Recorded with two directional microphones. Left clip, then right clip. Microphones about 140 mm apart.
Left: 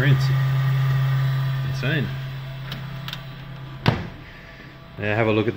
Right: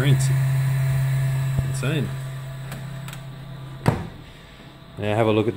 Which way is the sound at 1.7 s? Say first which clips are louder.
Left 2 dB; 10° right (ahead or behind).